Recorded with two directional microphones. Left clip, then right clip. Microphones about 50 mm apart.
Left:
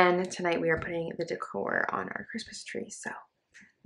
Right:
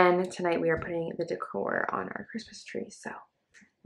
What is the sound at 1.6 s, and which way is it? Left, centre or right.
Speech, centre.